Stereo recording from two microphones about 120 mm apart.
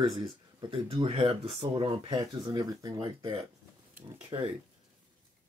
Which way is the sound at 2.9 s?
45° right (ahead or behind).